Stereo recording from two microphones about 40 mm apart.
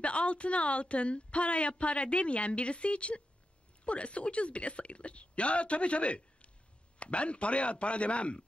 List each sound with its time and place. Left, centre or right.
0.0 s a woman's voice: left